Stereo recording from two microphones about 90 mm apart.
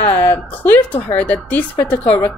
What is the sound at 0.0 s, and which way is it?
A woman's voice, 20° left (ahead or behind).